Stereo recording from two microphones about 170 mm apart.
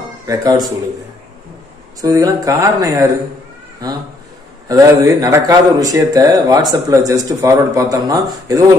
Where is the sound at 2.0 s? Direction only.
20° right (ahead or behind).